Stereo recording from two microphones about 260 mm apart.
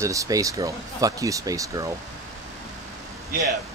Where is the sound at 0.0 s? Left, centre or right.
Centre.